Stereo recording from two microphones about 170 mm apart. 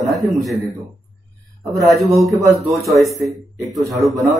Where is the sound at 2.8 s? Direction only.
Centre (ahead or behind).